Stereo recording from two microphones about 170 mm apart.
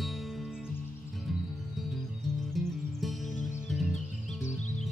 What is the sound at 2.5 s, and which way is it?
Music, centre (ahead or behind).